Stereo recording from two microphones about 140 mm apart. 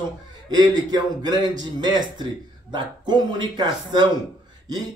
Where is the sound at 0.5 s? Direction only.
30° right (ahead or behind).